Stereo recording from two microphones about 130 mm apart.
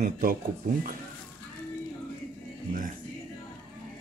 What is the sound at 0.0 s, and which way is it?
Speech, 90° right.